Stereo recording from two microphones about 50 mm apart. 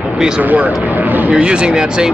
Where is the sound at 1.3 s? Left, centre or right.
Centre.